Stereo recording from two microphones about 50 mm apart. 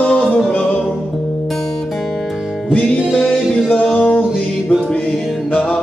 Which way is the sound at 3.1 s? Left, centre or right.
Centre.